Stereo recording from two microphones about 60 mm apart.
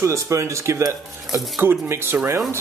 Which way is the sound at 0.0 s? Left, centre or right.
Right.